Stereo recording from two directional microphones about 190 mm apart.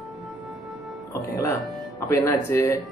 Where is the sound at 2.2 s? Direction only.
20° left (ahead or behind).